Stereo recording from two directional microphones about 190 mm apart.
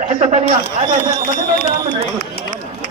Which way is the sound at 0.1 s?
35° right (ahead or behind).